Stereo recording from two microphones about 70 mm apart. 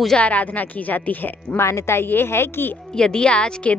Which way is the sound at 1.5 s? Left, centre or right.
Left.